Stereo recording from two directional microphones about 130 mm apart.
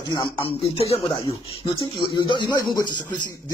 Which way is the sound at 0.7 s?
50° left (ahead or behind).